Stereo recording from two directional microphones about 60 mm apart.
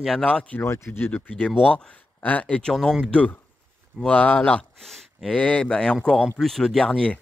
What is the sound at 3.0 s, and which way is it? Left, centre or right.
Speech, centre.